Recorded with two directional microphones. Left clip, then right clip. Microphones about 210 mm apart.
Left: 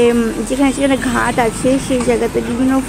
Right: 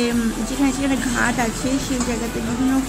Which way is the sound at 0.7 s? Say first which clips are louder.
Left 7 dB; 20° left (ahead or behind).